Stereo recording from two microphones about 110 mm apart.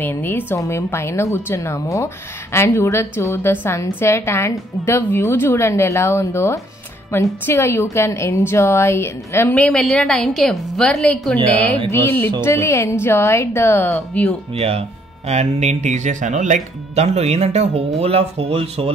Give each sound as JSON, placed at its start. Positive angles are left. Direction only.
{"t": 0.0, "sound": "a woman's voice", "side_deg": 20}
{"t": 14.5, "sound": "speech", "side_deg": -65}